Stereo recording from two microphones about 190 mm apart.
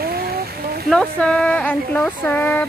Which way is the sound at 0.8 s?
5° left (ahead or behind).